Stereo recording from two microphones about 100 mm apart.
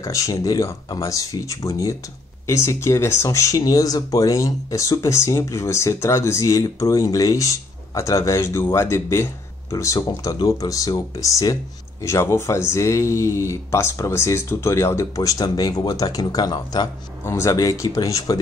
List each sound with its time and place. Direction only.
0.0 s speech: 35° left (ahead or behind)
17.2 s speech: 30° left (ahead or behind)